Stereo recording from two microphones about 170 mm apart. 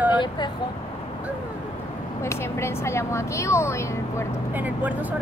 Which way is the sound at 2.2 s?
15° left (ahead or behind).